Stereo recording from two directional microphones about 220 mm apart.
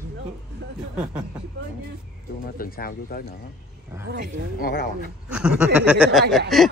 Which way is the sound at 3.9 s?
15° right (ahead or behind).